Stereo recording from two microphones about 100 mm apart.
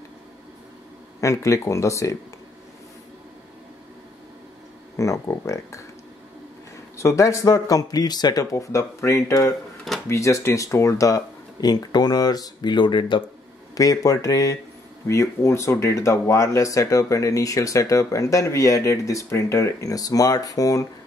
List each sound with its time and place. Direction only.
1.2 s speech: 30° left (ahead or behind)
4.9 s speech: 30° left (ahead or behind)
7.0 s speech: 30° left (ahead or behind); by 13.2 s 50° left (ahead or behind)
13.7 s speech: 35° left (ahead or behind)